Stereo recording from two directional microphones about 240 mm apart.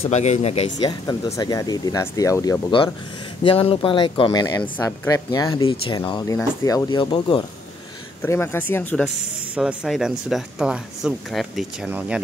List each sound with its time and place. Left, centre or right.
0.1 s speech: left
8.2 s speech: centre
9.6 s speech: centre